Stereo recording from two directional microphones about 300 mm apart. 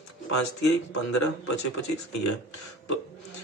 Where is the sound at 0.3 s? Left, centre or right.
Left.